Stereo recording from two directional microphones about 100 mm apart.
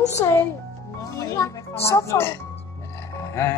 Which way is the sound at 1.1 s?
30° left (ahead or behind).